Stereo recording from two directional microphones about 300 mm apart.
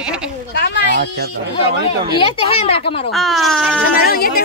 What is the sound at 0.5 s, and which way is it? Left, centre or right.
Speech, left.